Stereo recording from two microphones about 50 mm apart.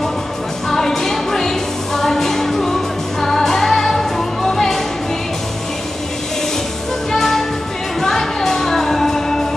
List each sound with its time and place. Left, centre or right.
0.7 s music: centre
7.1 s music: centre